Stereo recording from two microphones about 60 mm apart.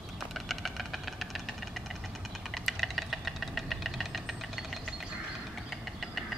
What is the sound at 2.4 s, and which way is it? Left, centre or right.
Engine knocking, centre.